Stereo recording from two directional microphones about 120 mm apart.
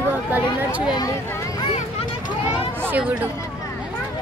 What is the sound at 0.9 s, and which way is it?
Speech, 30° left (ahead or behind).